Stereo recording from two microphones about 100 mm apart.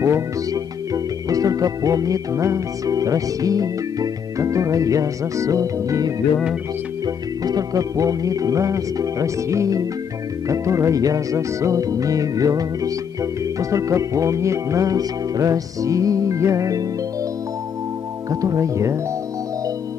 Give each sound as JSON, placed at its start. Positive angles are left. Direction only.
{"t": 0.0, "sound": "music", "side_deg": -35}
{"t": 7.4, "sound": "music", "side_deg": -40}
{"t": 18.3, "sound": "music", "side_deg": -35}